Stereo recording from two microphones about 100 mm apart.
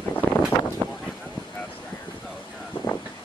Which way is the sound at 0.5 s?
50° left (ahead or behind).